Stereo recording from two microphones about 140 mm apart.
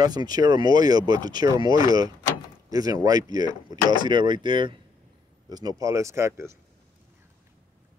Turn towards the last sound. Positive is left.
turn(degrees=-20)  # may be behind; listen again after turning